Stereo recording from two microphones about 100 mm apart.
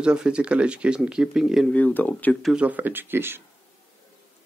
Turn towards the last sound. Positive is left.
turn(degrees=-20)  # may be behind; listen again after turning